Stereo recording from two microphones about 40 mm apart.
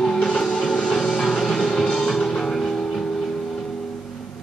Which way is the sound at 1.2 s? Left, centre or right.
Centre.